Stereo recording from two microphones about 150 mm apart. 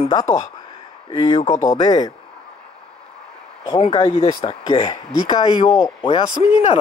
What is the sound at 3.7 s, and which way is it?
Speech, 40° left (ahead or behind).